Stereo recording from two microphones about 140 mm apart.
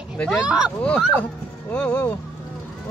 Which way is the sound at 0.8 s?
10° left (ahead or behind).